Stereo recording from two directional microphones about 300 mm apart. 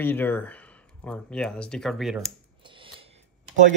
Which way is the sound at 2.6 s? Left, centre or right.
Centre.